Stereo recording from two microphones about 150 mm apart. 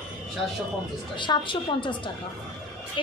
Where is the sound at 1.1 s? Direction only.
30° left (ahead or behind).